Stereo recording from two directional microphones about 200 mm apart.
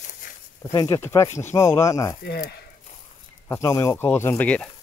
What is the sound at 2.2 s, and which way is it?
Speech, 55° left (ahead or behind).